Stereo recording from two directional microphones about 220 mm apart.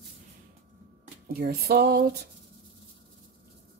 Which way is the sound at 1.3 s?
45° right (ahead or behind).